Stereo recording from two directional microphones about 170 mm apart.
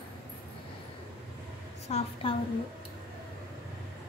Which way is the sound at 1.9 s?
40° left (ahead or behind).